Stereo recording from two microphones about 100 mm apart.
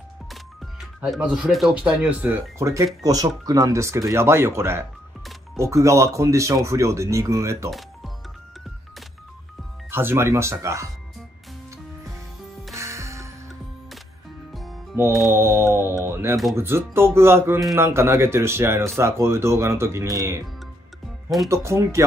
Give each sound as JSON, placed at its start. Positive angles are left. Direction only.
{"t": 0.3, "sound": "music", "side_deg": 0}
{"t": 1.2, "sound": "speech", "side_deg": -10}
{"t": 2.6, "sound": "speech", "side_deg": -35}
{"t": 9.8, "sound": "speech", "side_deg": -25}
{"t": 12.7, "sound": "music", "side_deg": -30}
{"t": 14.5, "sound": "music", "side_deg": 0}
{"t": 15.3, "sound": "speech", "side_deg": -25}
{"t": 21.5, "sound": "speech", "side_deg": -30}